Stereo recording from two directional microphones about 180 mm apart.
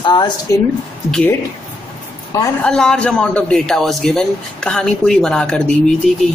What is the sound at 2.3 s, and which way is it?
Speech, 15° left (ahead or behind).